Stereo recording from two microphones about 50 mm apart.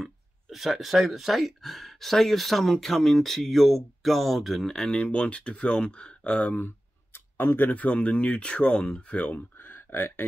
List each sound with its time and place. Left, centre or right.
0.0 s speech: centre
4.9 s speech: left
7.3 s speech: left
9.6 s a sound: left